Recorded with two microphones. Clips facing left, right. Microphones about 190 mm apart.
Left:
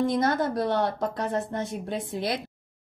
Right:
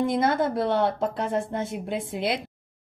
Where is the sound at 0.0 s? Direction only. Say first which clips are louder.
Right 1 dB; 25° right (ahead or behind).